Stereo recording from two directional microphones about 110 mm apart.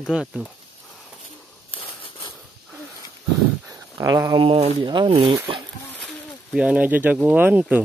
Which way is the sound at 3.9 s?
35° right (ahead or behind).